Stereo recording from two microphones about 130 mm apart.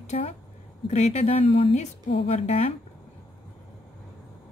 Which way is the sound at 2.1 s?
45° left (ahead or behind).